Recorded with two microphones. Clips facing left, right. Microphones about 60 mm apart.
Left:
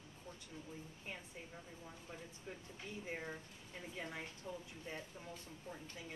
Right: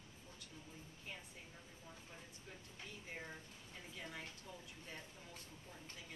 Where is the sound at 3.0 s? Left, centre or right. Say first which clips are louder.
Left 6 dB; left.